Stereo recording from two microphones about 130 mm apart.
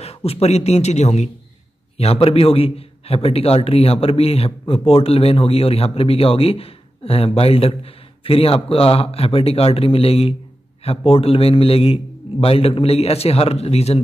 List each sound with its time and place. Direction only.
0.0 s speech: 50° left (ahead or behind)
2.0 s a man's voice: 50° left (ahead or behind)